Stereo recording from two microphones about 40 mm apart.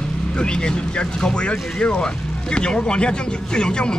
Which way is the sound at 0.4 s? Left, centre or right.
Left.